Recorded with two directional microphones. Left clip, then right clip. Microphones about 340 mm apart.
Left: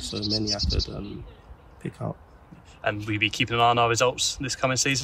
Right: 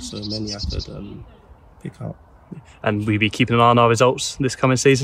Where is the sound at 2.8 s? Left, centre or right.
Centre.